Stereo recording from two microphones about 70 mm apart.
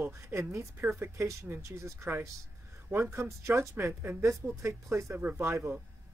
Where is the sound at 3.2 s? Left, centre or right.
Right.